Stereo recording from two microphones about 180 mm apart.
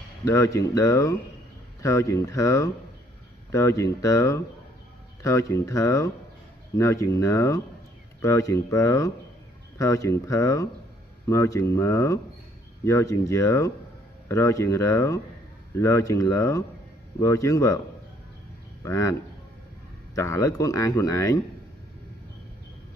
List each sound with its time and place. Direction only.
0.2 s speech: 15° left (ahead or behind)
18.8 s speech: 15° left (ahead or behind)
20.2 s speech: 15° left (ahead or behind)